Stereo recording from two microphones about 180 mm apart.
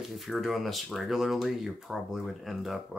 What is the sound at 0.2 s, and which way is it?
Speech, centre (ahead or behind).